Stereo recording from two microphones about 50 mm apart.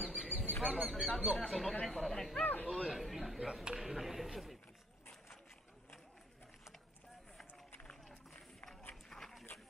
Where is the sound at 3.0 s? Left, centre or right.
Centre.